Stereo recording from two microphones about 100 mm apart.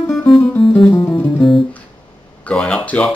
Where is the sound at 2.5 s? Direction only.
10° left (ahead or behind).